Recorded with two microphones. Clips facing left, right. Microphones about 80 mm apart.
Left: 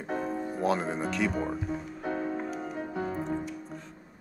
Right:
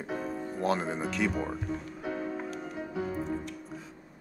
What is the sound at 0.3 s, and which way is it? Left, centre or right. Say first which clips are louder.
Music: left 3 dB; centre.